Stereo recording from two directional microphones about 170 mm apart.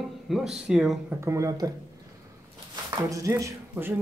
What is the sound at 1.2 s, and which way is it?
Speech, 20° right (ahead or behind).